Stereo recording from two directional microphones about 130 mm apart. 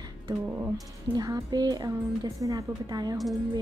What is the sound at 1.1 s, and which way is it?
A woman's voice, 30° right (ahead or behind).